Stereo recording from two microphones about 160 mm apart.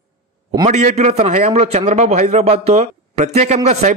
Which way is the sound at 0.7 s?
45° right (ahead or behind).